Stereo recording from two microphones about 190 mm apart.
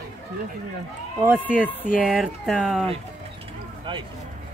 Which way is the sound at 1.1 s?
15° right (ahead or behind).